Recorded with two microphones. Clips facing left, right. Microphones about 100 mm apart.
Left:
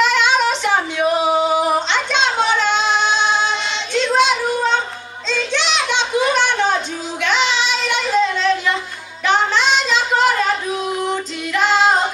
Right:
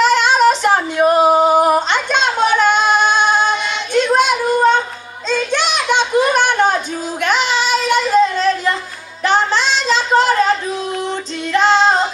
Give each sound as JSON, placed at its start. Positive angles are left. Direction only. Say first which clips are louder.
{"t": 0.0, "sound": "singing", "louder": "right 4 dB", "side_deg": -40}
{"t": 5.3, "sound": "a sound", "louder": "right 3 dB", "side_deg": -50}
{"t": 9.2, "sound": "child singing", "louder": "right 1 dB", "side_deg": -35}
{"t": 11.5, "sound": "female singing", "louder": "right 3 dB", "side_deg": -30}